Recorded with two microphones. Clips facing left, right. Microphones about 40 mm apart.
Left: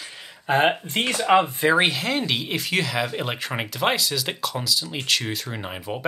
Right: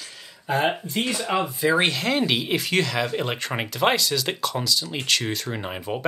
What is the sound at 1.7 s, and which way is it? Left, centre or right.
Speech, centre.